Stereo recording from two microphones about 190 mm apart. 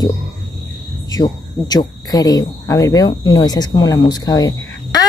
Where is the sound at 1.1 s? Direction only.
20° left (ahead or behind).